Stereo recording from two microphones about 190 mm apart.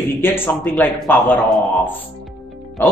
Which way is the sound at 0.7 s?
10° left (ahead or behind).